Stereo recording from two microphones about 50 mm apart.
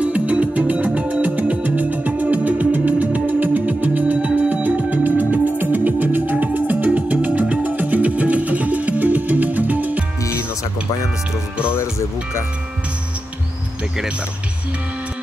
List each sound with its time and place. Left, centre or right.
0.0 s music: right
11.7 s music: left